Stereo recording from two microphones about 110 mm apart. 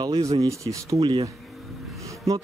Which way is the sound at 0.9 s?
50° right (ahead or behind).